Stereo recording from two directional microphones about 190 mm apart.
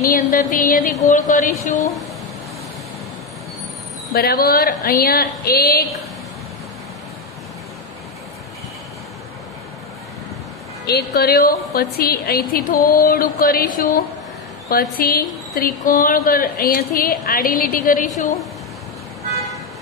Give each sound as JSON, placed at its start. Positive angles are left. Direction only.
{"t": 0.1, "sound": "a woman's voice", "side_deg": 45}
{"t": 4.1, "sound": "a woman's voice", "side_deg": 50}
{"t": 10.9, "sound": "a woman's voice", "side_deg": 55}